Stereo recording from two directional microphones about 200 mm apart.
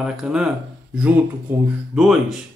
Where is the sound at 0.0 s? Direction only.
5° right (ahead or behind).